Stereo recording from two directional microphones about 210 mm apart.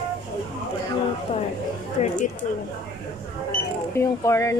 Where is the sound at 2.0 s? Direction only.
30° left (ahead or behind).